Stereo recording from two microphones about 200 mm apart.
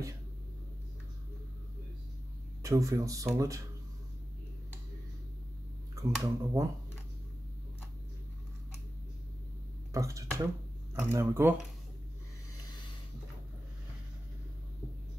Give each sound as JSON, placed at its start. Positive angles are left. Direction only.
{"t": 2.6, "sound": "speech", "side_deg": -15}
{"t": 6.2, "sound": "speech", "side_deg": -15}
{"t": 9.9, "sound": "speech", "side_deg": -15}